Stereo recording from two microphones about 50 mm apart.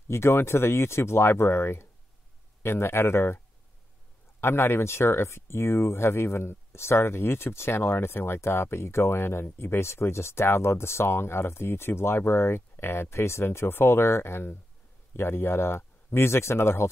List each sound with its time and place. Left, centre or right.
0.1 s speech: left
4.4 s speech: left